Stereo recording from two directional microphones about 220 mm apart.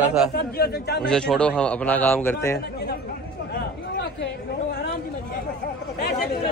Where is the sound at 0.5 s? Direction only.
45° left (ahead or behind).